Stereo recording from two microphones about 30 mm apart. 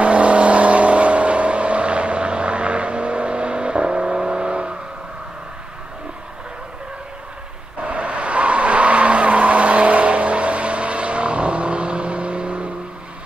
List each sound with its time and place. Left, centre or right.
0.0 s vehicle: right
7.8 s vehicle: right